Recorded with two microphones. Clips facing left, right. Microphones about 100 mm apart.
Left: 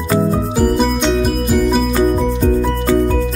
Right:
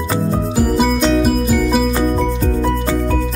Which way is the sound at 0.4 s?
Centre (ahead or behind).